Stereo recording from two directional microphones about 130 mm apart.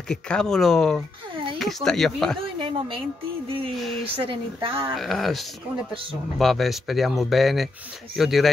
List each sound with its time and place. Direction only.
0.1 s speech: 5° left (ahead or behind)
1.3 s a sound: 40° right (ahead or behind)
1.6 s speech: 5° left (ahead or behind)
2.4 s a woman's voice: 45° right (ahead or behind)
3.7 s speech: centre (ahead or behind)
4.1 s a woman's voice: 45° right (ahead or behind)
4.9 s speech: centre (ahead or behind)